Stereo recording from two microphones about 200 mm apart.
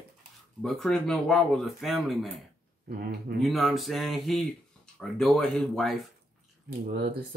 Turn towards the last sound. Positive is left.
turn(degrees=-50)  # may be behind; listen again after turning